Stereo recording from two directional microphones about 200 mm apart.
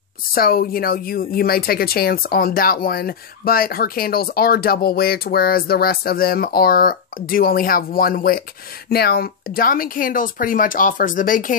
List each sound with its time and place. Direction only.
0.3 s speech: 45° left (ahead or behind)